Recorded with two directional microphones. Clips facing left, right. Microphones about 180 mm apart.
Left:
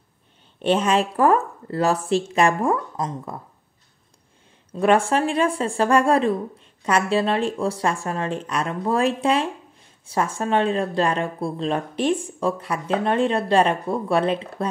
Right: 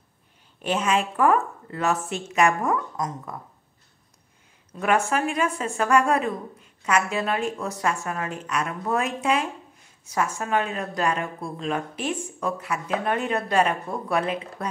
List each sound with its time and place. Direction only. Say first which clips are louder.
0.6 s a woman's voice: left 4 dB; 30° left (ahead or behind)
4.7 s a woman's voice: left 5 dB; 30° left (ahead or behind)